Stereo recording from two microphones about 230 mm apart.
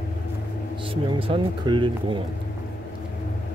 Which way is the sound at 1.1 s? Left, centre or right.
Right.